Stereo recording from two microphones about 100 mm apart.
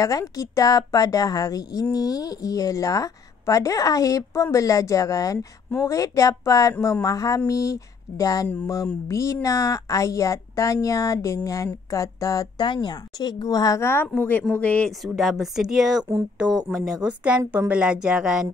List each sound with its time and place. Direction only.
0.0 s a woman's voice: 35° left (ahead or behind)
12.6 s a woman's voice: 50° left (ahead or behind); by 14.9 s 15° left (ahead or behind)
14.9 s speech: centre (ahead or behind)
17.5 s speech: 15° right (ahead or behind)